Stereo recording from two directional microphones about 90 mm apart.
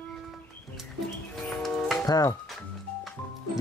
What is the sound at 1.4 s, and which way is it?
Music, 5° left (ahead or behind).